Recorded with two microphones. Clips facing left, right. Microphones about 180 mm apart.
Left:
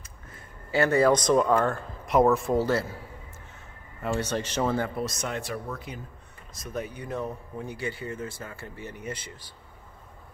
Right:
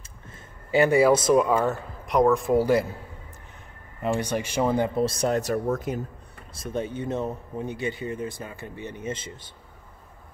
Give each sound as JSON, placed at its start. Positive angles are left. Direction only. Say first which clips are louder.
{"t": 0.3, "sound": "speech", "louder": "right 5 dB", "side_deg": -15}
{"t": 2.5, "sound": "a man's voice", "louder": "right 4 dB", "side_deg": -15}
{"t": 4.0, "sound": "speech", "louder": "right 3 dB", "side_deg": -15}
{"t": 6.5, "sound": "speech", "louder": "right 5 dB", "side_deg": -30}